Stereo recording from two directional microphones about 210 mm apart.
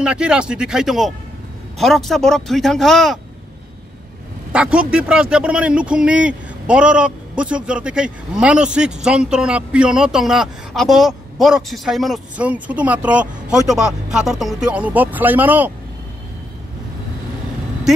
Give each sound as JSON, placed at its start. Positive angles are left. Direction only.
{"t": 0.0, "sound": "speech", "side_deg": -5}
{"t": 4.5, "sound": "speech", "side_deg": -5}